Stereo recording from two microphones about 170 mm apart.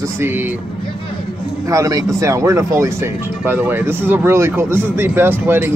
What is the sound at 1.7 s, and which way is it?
A man's voice, 20° right (ahead or behind).